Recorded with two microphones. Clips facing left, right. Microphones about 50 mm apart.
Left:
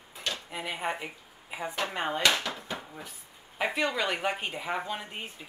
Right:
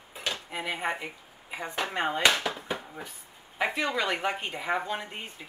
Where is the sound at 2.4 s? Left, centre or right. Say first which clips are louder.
Right 3 dB; centre.